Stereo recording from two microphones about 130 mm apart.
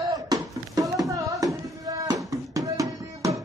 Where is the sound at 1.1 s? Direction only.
25° right (ahead or behind).